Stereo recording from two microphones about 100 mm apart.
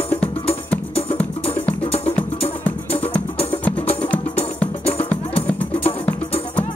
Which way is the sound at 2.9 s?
75° left (ahead or behind).